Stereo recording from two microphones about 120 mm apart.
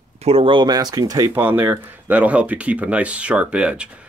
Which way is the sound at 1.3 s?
15° right (ahead or behind).